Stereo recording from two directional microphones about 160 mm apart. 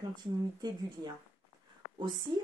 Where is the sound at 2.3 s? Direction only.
30° right (ahead or behind).